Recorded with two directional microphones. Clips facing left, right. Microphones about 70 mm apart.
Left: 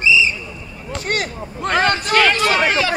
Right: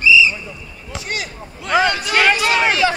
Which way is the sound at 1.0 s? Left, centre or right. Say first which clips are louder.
Left 5 dB; left.